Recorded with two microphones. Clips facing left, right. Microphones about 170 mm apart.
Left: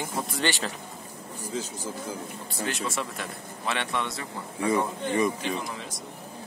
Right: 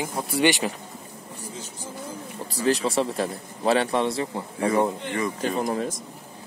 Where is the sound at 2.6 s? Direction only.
35° right (ahead or behind).